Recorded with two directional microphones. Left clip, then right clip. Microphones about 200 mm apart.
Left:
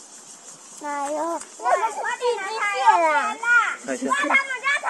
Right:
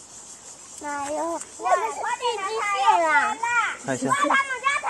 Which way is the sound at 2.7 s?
40° left (ahead or behind).